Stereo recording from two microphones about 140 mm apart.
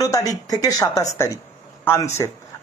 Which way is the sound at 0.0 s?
25° left (ahead or behind).